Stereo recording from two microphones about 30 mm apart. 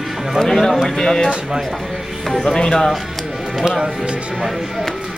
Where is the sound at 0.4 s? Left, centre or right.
Centre.